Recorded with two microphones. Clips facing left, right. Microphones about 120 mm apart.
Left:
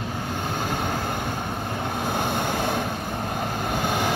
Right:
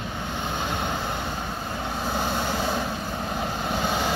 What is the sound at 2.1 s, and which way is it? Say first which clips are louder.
Vehicle: left 1 dB; 55° left (ahead or behind).